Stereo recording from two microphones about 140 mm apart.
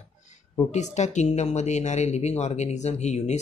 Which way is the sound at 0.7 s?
55° left (ahead or behind).